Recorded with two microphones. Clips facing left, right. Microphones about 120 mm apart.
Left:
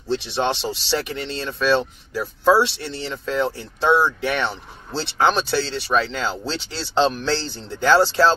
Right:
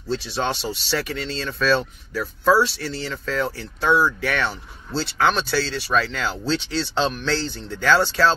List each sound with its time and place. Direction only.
0.1 s speech: 25° left (ahead or behind)